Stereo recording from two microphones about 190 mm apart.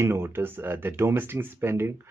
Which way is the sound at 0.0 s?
15° right (ahead or behind).